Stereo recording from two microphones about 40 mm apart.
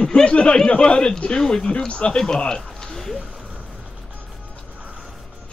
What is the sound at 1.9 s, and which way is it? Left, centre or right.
Speech, left.